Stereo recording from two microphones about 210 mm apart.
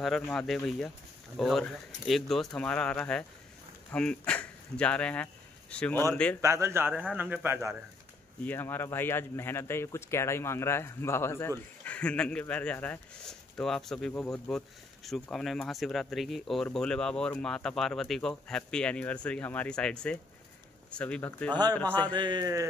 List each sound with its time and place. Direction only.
0.0 s speech: centre (ahead or behind)
6.4 s speech: 15° right (ahead or behind)
8.5 s speech: 10° left (ahead or behind)
22.0 s a man's voice: 20° right (ahead or behind)